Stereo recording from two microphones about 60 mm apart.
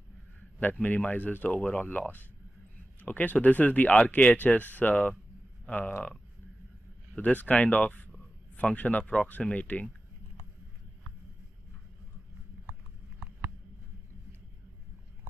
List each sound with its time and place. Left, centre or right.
0.8 s speech: left
7.2 s speech: left